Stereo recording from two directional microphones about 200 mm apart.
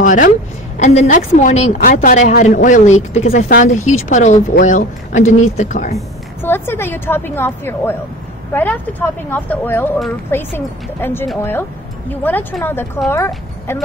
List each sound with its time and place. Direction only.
0.0 s a woman's voice: 40° left (ahead or behind)
6.4 s a woman's voice: 10° left (ahead or behind)